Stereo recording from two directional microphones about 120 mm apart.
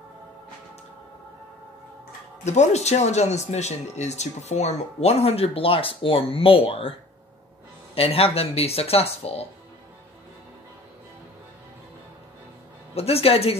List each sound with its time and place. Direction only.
2.4 s speech: 70° left (ahead or behind); by 6.9 s 50° left (ahead or behind)
7.9 s speech: 55° left (ahead or behind)
12.9 s speech: 55° left (ahead or behind)